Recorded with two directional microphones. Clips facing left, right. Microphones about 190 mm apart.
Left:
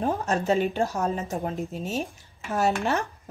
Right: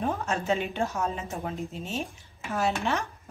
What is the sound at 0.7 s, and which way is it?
A woman's voice, 35° left (ahead or behind).